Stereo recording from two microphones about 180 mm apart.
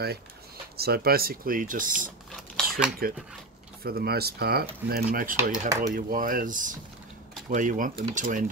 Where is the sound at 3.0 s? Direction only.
55° right (ahead or behind).